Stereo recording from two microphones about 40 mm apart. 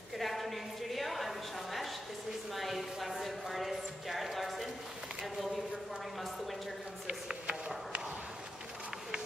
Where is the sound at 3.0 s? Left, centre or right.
Centre.